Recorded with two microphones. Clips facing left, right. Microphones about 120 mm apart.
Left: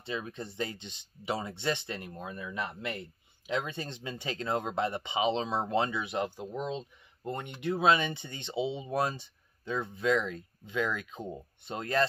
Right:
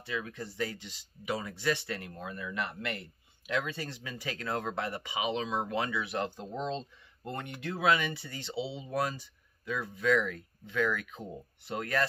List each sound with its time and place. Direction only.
0.0 s speech: 25° left (ahead or behind)